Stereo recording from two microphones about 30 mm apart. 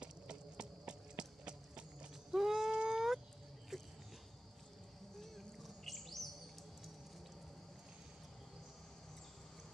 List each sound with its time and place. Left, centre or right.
0.0 s clip-clop: right
2.3 s a sound: centre
5.2 s bird: centre